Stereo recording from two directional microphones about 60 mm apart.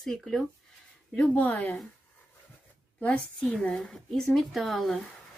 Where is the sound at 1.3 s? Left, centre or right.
Left.